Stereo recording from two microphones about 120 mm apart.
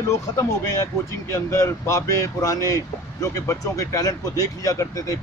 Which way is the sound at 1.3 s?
25° left (ahead or behind).